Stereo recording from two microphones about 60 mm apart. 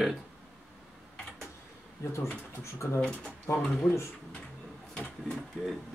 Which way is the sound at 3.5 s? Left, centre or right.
Left.